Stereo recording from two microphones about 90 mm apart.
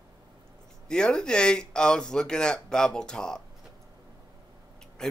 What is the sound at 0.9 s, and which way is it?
Speech, 10° left (ahead or behind).